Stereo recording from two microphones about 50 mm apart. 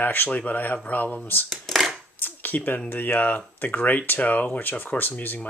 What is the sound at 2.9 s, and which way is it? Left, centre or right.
Speech, left.